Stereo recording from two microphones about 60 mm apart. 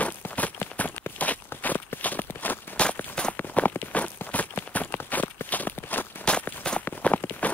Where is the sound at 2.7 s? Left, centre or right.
Centre.